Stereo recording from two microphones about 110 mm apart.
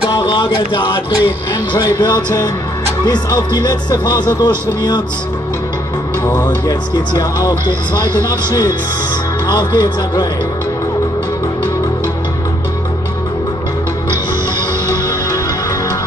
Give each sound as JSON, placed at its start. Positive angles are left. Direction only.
{"t": 0.3, "sound": "speech", "side_deg": 50}
{"t": 6.4, "sound": "speech", "side_deg": 35}